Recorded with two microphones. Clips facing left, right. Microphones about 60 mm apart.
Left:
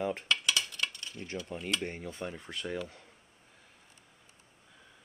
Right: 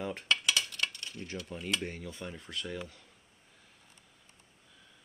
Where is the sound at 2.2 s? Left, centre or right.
Centre.